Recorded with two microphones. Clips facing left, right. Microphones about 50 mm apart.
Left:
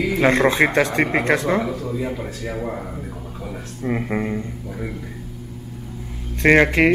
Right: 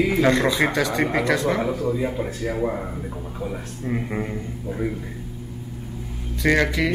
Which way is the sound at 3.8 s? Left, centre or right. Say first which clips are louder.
Left 4 dB; left.